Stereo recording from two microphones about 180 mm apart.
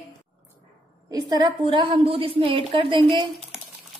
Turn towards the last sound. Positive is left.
turn(degrees=-25)  # may be behind; listen again after turning